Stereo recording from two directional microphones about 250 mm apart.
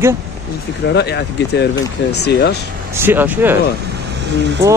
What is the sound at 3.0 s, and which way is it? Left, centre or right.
Speech, centre.